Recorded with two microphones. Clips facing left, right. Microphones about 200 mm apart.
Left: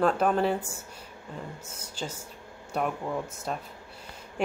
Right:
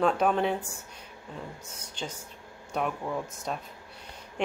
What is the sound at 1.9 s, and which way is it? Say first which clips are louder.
A woman's voice: left 1 dB; 5° left (ahead or behind).